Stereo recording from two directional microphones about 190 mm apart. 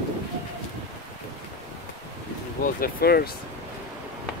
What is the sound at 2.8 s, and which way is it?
Speech, 55° left (ahead or behind).